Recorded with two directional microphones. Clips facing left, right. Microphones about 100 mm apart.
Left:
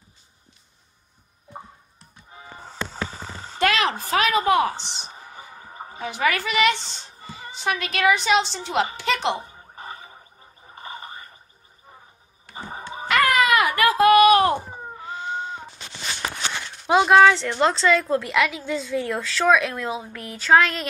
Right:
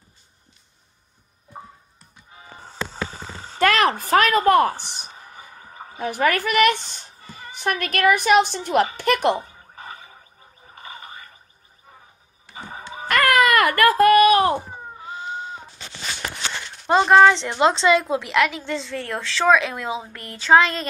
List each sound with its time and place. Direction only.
3.5 s a sound: 50° right (ahead or behind)
4.1 s a woman's voice: 55° right (ahead or behind)
4.7 s speech: 20° left (ahead or behind)
5.9 s a woman's voice: 50° right (ahead or behind)
10.8 s a sound: 35° left (ahead or behind)
12.5 s music: 35° left (ahead or behind)
13.1 s baby cry: 55° right (ahead or behind); by 15.1 s 25° right (ahead or behind)
15.1 s a sound: 30° left (ahead or behind)
16.8 s a woman's voice: 5° left (ahead or behind)